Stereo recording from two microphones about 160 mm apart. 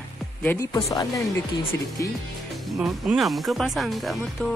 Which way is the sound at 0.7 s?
25° left (ahead or behind).